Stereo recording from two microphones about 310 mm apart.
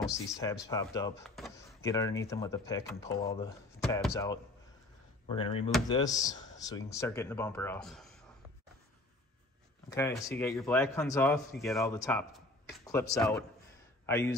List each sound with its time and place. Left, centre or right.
0.7 s speech: centre
9.8 s speech: centre